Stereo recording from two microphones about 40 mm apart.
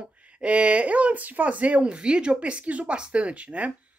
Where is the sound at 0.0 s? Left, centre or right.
Right.